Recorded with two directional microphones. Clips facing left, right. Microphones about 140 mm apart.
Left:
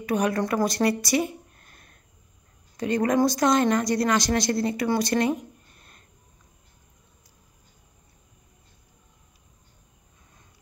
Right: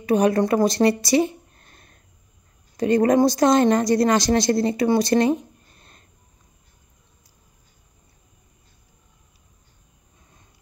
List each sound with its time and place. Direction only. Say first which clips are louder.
0.0 s a woman's voice: right 6 dB; 30° right (ahead or behind)